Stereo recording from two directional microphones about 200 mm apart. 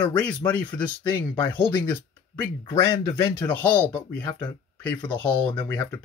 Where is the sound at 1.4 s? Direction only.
10° left (ahead or behind).